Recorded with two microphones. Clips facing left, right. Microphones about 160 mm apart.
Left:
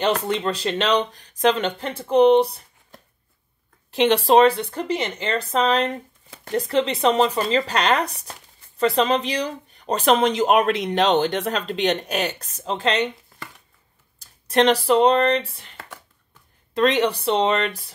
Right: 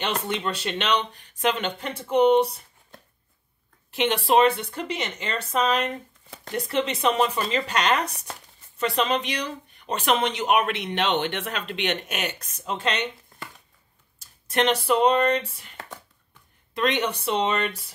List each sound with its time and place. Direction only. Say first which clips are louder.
0.0 s speech: left 6 dB; 35° left (ahead or behind)
3.9 s speech: left 5 dB; 35° left (ahead or behind)
14.5 s speech: left 5 dB; 35° left (ahead or behind)
16.7 s speech: left 6 dB; 35° left (ahead or behind)